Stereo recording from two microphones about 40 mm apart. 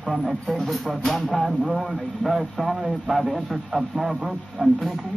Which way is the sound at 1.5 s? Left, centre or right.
Centre.